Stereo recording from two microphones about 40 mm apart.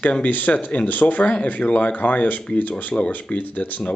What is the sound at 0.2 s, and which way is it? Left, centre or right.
Speech, left.